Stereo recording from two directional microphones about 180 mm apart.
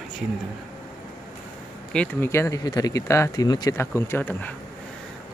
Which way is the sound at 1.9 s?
10° left (ahead or behind).